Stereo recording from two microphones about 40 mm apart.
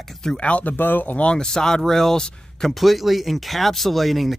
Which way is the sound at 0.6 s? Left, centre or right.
Left.